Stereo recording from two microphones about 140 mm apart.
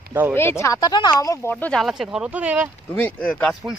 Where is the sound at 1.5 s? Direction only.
5° left (ahead or behind); by 2.7 s 10° right (ahead or behind).